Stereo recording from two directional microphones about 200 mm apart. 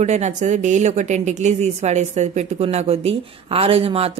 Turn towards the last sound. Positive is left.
turn(degrees=-30)  # may be behind; listen again after turning